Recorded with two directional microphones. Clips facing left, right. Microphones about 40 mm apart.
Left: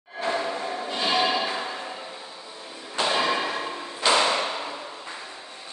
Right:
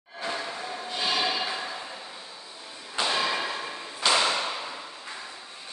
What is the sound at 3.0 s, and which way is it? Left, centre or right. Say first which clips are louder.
Thump: left 3 dB; centre.